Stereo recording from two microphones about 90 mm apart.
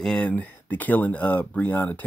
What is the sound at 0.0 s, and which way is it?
Speech, 10° left (ahead or behind).